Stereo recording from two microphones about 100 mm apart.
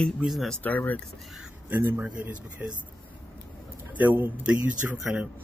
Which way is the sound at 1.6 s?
20° right (ahead or behind).